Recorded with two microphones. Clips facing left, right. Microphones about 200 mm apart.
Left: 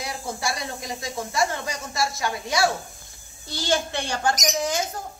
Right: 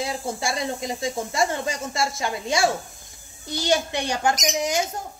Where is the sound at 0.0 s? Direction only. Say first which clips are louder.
Right 3 dB; 25° right (ahead or behind).